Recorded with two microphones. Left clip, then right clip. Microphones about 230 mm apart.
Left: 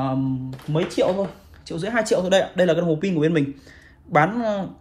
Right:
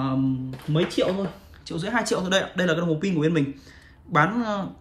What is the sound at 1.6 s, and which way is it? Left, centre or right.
Speech, centre.